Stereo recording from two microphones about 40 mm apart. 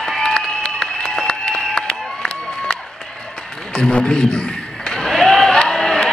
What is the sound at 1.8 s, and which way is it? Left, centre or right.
Run, left.